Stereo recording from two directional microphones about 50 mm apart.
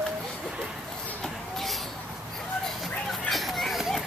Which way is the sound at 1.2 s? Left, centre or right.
Centre.